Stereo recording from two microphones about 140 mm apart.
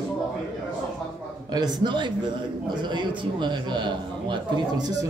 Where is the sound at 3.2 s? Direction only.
35° right (ahead or behind).